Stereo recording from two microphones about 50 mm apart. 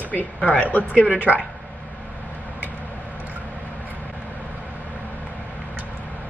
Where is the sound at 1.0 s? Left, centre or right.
Right.